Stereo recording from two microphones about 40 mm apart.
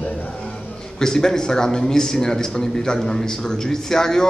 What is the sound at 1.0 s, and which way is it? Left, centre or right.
A man's voice, centre.